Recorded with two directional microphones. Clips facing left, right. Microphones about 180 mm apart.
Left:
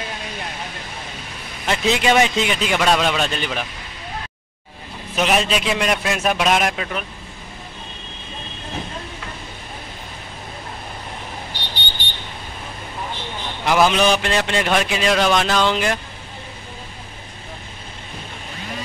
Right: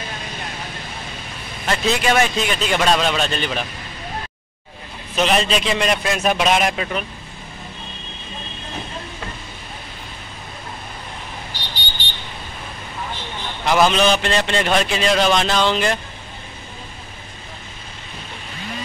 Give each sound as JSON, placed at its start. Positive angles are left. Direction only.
{"t": 1.7, "sound": "a man's voice", "side_deg": 20}
{"t": 5.1, "sound": "a man's voice", "side_deg": 10}
{"t": 11.5, "sound": "vehicle", "side_deg": 60}
{"t": 13.7, "sound": "a man's voice", "side_deg": 10}